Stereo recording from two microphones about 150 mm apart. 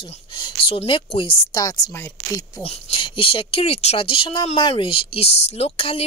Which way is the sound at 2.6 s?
40° left (ahead or behind).